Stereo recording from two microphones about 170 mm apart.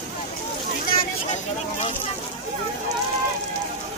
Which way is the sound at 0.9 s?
55° left (ahead or behind).